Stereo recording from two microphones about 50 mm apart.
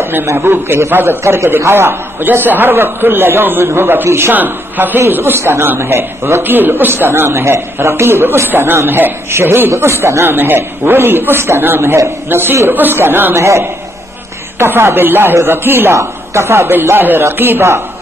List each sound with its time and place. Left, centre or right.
0.0 s a man's voice: right
1.2 s a man's voice: right
1.7 s a man's voice: right
4.3 s a man's voice: right
13.4 s a man's voice: right
14.6 s a man's voice: right
16.0 s a man's voice: right